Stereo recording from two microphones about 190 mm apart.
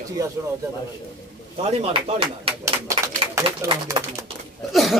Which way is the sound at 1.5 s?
35° right (ahead or behind).